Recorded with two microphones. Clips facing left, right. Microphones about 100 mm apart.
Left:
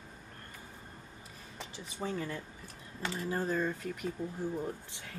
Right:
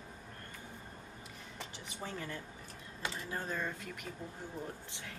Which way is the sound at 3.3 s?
35° left (ahead or behind).